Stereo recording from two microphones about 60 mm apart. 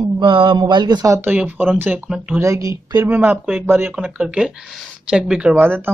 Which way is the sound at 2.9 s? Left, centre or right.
Right.